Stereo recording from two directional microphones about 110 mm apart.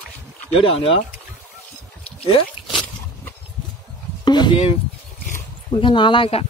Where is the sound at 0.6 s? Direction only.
60° left (ahead or behind).